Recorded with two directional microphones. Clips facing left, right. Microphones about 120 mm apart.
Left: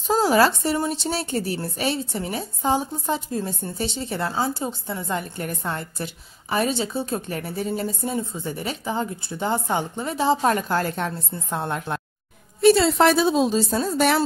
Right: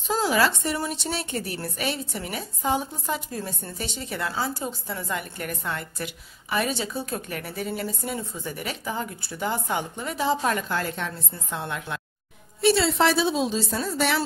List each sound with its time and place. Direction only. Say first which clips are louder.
0.1 s a woman's voice: left 5 dB; 40° left (ahead or behind)